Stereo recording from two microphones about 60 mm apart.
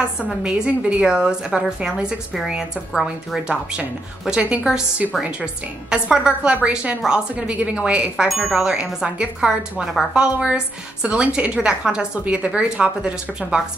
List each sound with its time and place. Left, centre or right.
0.4 s speech: centre
8.3 s speech: centre